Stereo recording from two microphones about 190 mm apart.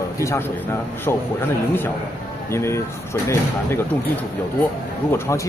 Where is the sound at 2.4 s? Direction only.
15° left (ahead or behind).